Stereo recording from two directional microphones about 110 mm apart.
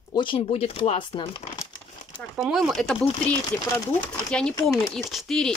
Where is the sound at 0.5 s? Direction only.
60° left (ahead or behind).